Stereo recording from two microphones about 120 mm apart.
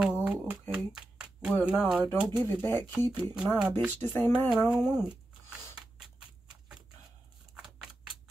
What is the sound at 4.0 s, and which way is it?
Speech, 20° left (ahead or behind).